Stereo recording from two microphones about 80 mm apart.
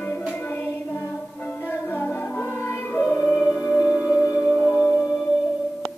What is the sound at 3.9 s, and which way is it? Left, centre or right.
Music, centre.